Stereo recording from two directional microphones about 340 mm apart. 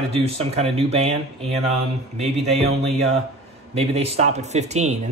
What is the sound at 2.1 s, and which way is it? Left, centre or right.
Speech, centre.